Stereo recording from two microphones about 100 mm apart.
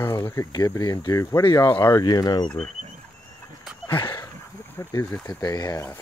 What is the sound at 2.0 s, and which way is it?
Speech, 40° left (ahead or behind).